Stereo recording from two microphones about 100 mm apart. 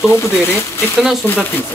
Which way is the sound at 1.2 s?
25° left (ahead or behind).